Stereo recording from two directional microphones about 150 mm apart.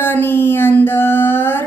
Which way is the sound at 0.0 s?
15° left (ahead or behind).